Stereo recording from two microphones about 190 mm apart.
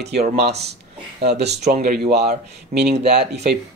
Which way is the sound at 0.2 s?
55° right (ahead or behind).